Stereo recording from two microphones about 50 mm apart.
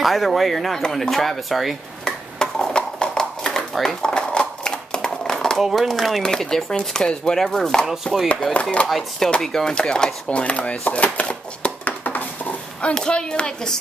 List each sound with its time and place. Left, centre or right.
0.0 s speech: centre
2.0 s a sound: centre
5.6 s speech: centre
7.8 s speech: centre; by 12.5 s left
12.8 s speech: centre